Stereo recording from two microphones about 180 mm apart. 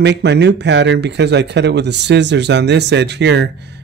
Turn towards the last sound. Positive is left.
turn(degrees=-70)  # may be behind; listen again after turning